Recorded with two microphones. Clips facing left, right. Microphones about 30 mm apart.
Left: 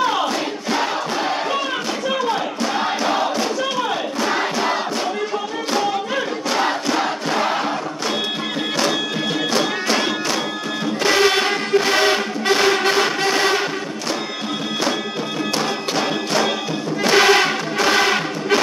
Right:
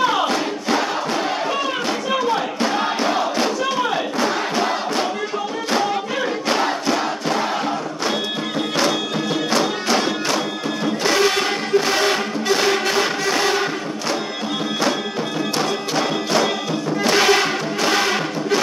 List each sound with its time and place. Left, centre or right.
7.0 s choir: centre
9.5 s music: centre
15.6 s music: centre